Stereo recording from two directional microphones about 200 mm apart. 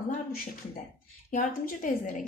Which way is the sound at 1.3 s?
40° left (ahead or behind).